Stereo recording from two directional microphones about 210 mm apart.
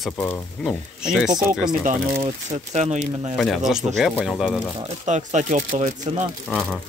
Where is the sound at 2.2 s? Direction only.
30° right (ahead or behind).